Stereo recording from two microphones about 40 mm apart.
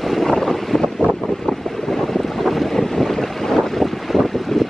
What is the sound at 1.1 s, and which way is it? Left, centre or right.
Wind noise, centre.